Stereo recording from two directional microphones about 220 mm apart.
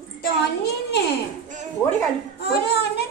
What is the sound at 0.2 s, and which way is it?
Speech, 50° left (ahead or behind).